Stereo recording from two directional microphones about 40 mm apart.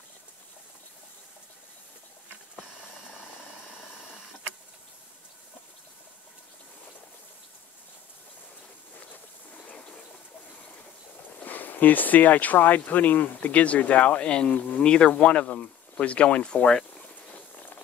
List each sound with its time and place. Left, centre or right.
11.4 s speech: left